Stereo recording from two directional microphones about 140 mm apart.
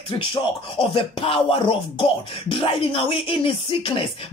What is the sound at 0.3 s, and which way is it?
Speech, 40° left (ahead or behind).